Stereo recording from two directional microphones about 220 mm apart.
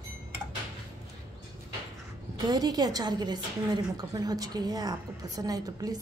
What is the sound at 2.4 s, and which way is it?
A woman's voice, 15° right (ahead or behind).